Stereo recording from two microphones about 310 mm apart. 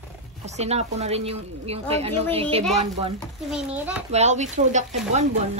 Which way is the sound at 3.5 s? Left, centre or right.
Centre.